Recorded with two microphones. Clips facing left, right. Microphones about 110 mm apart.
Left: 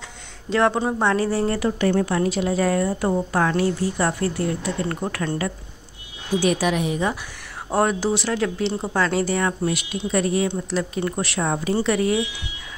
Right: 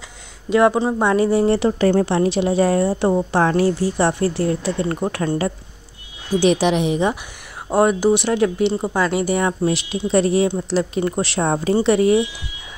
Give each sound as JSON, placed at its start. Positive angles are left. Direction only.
{"t": 0.5, "sound": "speech", "side_deg": -10}
{"t": 1.0, "sound": "a woman's voice", "side_deg": -20}
{"t": 6.4, "sound": "speech", "side_deg": -25}
{"t": 7.7, "sound": "speech", "side_deg": -10}
{"t": 9.7, "sound": "speech", "side_deg": -30}
{"t": 11.7, "sound": "speech", "side_deg": -25}